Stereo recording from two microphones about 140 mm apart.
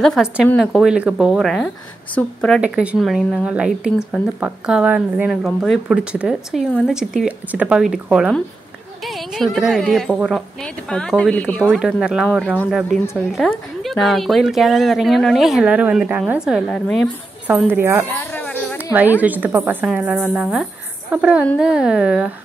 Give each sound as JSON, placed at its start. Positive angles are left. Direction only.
{"t": 0.0, "sound": "speech", "side_deg": 0}
{"t": 2.6, "sound": "speech", "side_deg": -10}
{"t": 11.6, "sound": "speech", "side_deg": -5}
{"t": 17.5, "sound": "a woman's voice", "side_deg": -15}
{"t": 18.3, "sound": "a sound", "side_deg": 10}
{"t": 18.8, "sound": "a sound", "side_deg": -10}
{"t": 19.2, "sound": "a woman's voice", "side_deg": -15}